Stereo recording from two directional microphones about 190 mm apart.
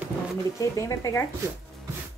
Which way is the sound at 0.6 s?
15° left (ahead or behind).